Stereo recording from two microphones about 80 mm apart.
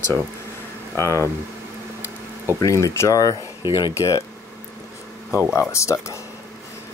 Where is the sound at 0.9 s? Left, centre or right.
Left.